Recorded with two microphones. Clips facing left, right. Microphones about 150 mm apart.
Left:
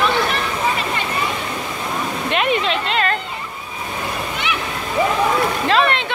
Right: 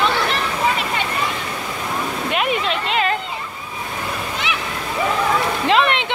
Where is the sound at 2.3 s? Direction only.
10° right (ahead or behind).